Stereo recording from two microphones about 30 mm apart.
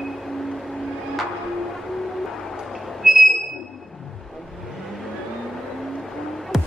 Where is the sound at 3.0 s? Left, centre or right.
Right.